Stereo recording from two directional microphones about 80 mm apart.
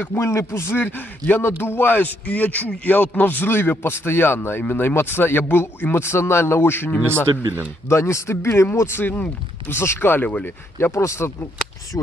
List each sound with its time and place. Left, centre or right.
0.0 s a man's voice: left
11.0 s a man's voice: left